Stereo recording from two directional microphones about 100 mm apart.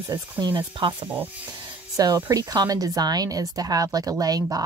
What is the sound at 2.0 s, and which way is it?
Speech, 35° right (ahead or behind).